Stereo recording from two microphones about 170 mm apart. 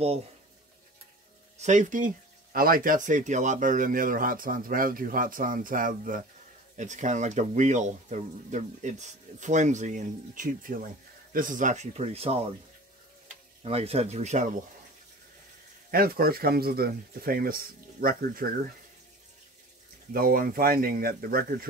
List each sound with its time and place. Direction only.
1.6 s speech: 45° right (ahead or behind)
13.7 s speech: 35° right (ahead or behind)
15.9 s speech: 60° right (ahead or behind)
20.1 s speech: 60° right (ahead or behind)